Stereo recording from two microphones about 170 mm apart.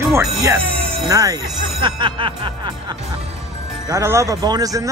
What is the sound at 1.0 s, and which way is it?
Speech, 20° right (ahead or behind).